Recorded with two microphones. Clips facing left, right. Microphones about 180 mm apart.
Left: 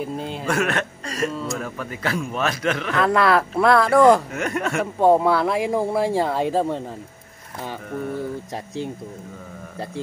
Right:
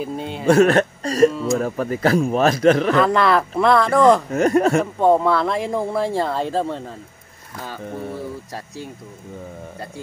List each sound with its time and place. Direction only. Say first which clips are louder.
0.0 s speech: right 1 dB; centre (ahead or behind)
0.5 s a man's voice: right 10 dB; 35° right (ahead or behind)
1.3 s speech: right 6 dB; centre (ahead or behind)
1.6 s a man's voice: right 8 dB; 40° right (ahead or behind)
2.9 s speech: right 2 dB; centre (ahead or behind)
4.3 s a man's voice: right 9 dB; 35° right (ahead or behind)
5.0 s speech: left 1 dB; 10° left (ahead or behind)